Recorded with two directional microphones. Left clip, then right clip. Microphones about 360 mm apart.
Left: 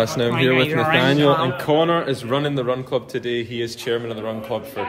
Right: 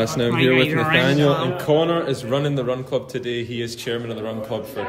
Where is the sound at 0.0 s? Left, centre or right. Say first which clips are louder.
Even; centre.